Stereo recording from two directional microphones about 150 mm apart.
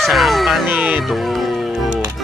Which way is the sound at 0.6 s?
10° right (ahead or behind).